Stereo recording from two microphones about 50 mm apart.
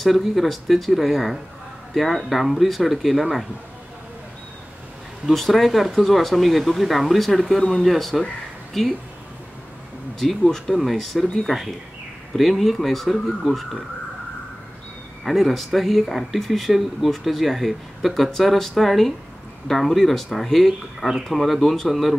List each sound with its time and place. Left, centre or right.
0.0 s speech: centre
5.3 s speech: centre
10.1 s speech: centre
15.2 s speech: centre